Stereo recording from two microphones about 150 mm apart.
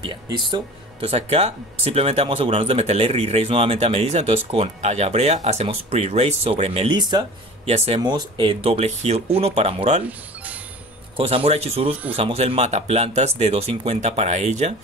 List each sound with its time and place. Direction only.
0.0 s speech: 30° right (ahead or behind)
1.0 s speech: 45° right (ahead or behind)
6.9 s speech: 30° right (ahead or behind)
7.6 s speech: 45° right (ahead or behind)
8.0 s speech: 30° right (ahead or behind)
10.0 s music: 10° right (ahead or behind)
11.1 s speech: 40° right (ahead or behind)